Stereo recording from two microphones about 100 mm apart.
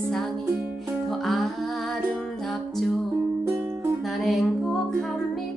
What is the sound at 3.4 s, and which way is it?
Music, 25° right (ahead or behind).